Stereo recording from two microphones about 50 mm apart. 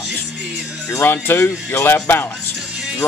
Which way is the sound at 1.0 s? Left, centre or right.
Left.